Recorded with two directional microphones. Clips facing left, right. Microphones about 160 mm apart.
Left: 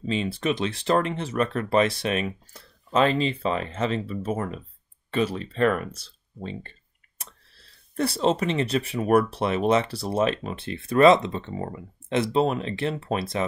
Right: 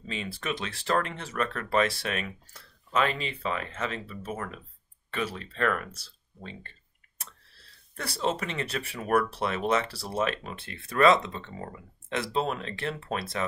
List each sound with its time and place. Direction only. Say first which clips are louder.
0.0 s speech: left 9 dB; 25° left (ahead or behind)
7.9 s speech: left 7 dB; 25° left (ahead or behind)